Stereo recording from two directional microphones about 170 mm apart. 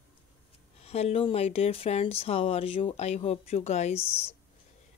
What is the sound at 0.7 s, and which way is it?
Speech, 35° left (ahead or behind).